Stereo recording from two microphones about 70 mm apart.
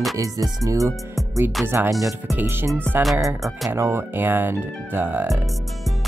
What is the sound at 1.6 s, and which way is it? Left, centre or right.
Speech, right.